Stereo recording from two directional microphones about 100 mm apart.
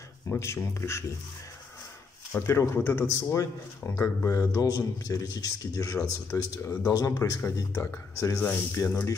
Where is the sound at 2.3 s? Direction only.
25° left (ahead or behind).